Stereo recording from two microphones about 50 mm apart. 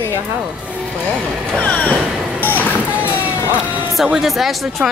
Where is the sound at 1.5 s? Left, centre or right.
Left.